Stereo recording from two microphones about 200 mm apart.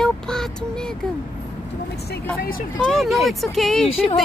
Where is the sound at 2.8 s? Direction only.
Centre (ahead or behind).